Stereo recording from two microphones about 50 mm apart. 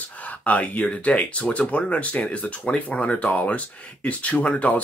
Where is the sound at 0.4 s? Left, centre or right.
Left.